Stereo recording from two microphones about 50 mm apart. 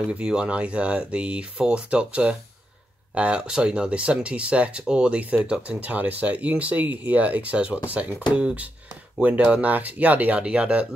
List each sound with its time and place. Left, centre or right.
0.2 s speech: centre